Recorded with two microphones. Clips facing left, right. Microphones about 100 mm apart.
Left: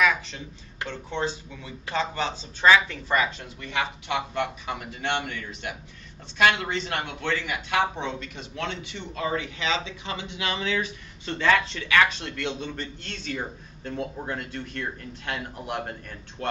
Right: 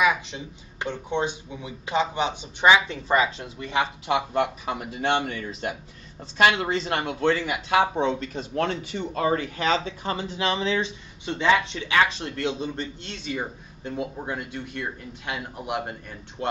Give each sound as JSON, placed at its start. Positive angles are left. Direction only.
{"t": 0.0, "sound": "speech", "side_deg": -20}
{"t": 11.2, "sound": "speech", "side_deg": -20}
{"t": 13.0, "sound": "speech", "side_deg": -15}